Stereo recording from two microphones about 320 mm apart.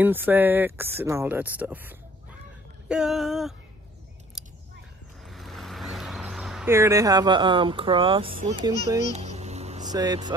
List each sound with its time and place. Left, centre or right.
0.0 s speech: centre
4.4 s scissors: centre
5.2 s speech: centre
9.2 s vehicle: right